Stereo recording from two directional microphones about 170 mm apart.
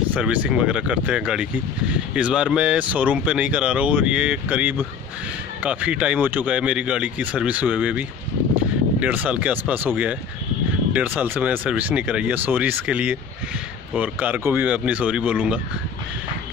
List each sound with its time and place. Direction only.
0.1 s speech: 10° right (ahead or behind)
9.0 s speech: 10° right (ahead or behind)